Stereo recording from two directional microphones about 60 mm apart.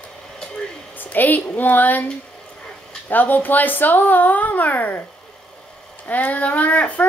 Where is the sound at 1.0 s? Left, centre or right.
Left.